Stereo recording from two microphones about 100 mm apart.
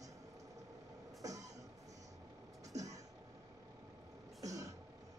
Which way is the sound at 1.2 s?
35° right (ahead or behind).